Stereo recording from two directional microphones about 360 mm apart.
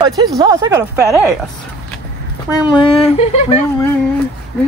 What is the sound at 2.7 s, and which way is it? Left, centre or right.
Speech, centre.